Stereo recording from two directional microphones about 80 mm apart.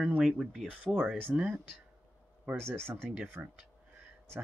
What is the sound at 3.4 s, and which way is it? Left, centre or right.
Speech, right.